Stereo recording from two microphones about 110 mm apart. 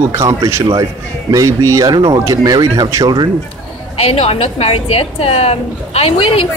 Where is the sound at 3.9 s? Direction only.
65° left (ahead or behind).